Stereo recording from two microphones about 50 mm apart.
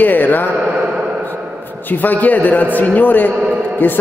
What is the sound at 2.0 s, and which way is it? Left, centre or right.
A man's voice, left.